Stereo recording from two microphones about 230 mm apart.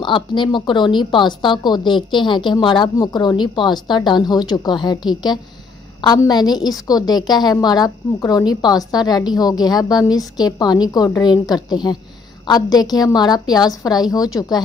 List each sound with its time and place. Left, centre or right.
0.0 s a woman's voice: left